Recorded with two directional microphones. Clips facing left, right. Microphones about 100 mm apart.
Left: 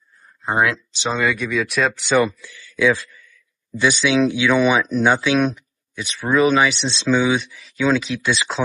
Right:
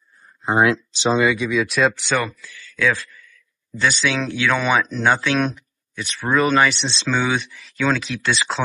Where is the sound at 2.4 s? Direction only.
20° left (ahead or behind).